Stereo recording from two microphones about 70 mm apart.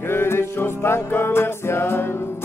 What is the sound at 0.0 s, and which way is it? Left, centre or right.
Music, left.